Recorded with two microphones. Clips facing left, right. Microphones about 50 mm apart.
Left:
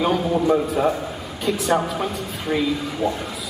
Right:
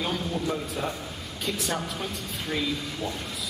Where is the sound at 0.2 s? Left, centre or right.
Left.